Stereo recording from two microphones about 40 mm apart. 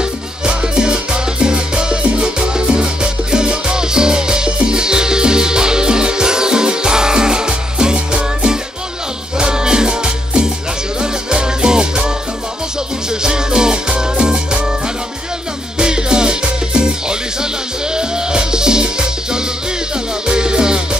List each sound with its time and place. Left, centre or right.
0.0 s music: right
13.2 s music: centre
15.8 s music: centre